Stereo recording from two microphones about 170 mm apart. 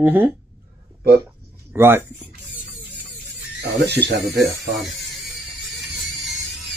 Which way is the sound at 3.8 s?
75° right (ahead or behind).